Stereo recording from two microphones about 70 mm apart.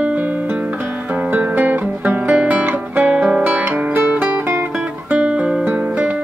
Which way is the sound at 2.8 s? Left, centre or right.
Right.